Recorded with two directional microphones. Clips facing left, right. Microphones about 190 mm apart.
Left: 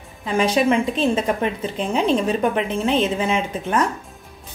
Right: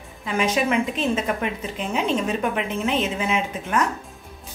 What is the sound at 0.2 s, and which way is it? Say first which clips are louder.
A woman's voice: left 4 dB; 30° left (ahead or behind).